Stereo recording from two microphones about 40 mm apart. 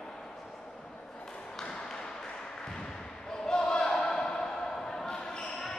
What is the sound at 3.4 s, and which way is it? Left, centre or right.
Basketball bounce, centre.